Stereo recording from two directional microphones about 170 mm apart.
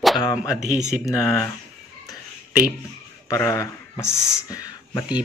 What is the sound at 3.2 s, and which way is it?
Speech, 15° left (ahead or behind).